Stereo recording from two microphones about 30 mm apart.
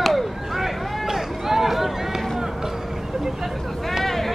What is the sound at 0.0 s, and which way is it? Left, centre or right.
Chop, centre.